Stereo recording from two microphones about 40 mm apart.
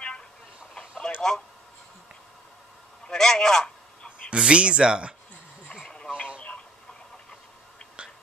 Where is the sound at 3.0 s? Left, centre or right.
Centre.